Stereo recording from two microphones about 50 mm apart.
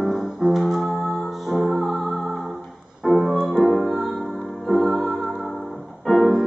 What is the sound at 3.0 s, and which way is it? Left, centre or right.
Music, centre.